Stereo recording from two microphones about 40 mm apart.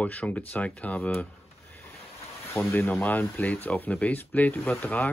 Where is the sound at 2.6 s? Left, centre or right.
Left.